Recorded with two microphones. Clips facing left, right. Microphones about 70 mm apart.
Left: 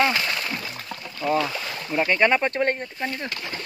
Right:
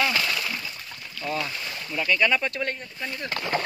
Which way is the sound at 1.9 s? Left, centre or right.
Left.